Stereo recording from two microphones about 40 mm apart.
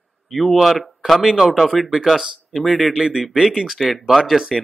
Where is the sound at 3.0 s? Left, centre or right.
Right.